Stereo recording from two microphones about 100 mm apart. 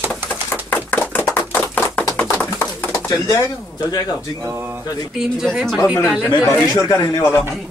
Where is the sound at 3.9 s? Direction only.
35° left (ahead or behind).